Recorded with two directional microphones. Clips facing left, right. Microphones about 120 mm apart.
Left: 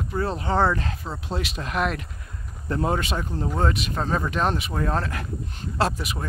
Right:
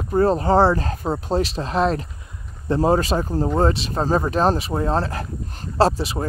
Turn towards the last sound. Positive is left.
turn(degrees=-30)  # may be behind; listen again after turning